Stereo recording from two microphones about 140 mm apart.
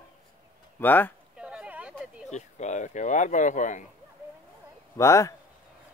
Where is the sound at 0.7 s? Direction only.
15° left (ahead or behind).